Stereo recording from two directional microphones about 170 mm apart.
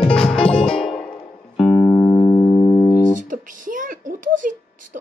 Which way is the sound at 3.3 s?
50° right (ahead or behind).